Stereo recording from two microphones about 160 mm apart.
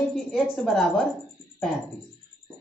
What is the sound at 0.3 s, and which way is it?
Speech, centre (ahead or behind).